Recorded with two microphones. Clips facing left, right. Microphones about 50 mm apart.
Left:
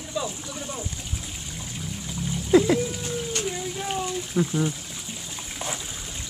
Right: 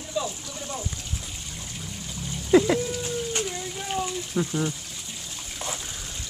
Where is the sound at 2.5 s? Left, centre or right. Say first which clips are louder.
Even; centre.